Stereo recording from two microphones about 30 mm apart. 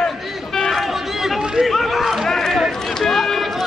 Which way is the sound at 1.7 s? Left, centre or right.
Centre.